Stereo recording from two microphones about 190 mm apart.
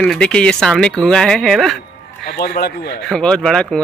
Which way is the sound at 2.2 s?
55° left (ahead or behind).